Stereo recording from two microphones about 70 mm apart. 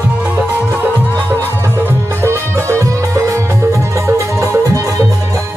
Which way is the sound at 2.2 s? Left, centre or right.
Right.